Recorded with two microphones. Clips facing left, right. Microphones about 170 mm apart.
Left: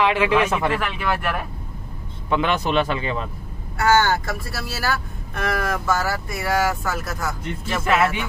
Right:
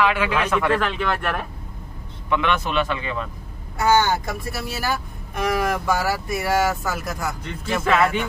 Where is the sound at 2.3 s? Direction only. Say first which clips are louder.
Left 1 dB; 35° left (ahead or behind).